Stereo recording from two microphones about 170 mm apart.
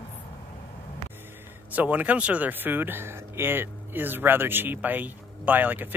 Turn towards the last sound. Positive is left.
turn(degrees=-10)  # may be behind; listen again after turning